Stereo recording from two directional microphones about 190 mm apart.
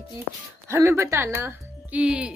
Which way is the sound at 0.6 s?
15° right (ahead or behind).